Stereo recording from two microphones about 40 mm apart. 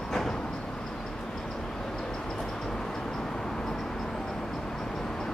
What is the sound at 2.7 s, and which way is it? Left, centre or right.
Vehicle, centre.